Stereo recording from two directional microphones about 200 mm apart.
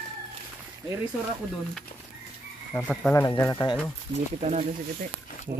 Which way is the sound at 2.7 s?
5° left (ahead or behind).